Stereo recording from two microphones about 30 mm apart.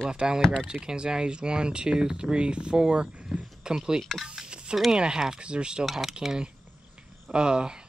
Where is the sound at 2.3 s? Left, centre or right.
Right.